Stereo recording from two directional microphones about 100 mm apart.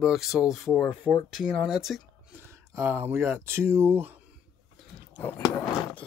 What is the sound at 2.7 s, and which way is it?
Speech, 25° right (ahead or behind).